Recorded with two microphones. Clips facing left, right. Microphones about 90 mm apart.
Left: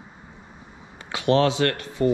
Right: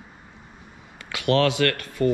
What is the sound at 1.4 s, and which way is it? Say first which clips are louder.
Speech: even; 65° right (ahead or behind).